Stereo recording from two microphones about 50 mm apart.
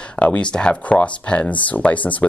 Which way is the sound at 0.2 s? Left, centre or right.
Left.